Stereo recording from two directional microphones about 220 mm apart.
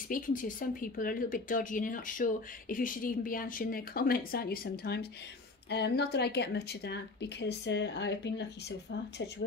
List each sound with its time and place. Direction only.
0.1 s speech: 35° left (ahead or behind)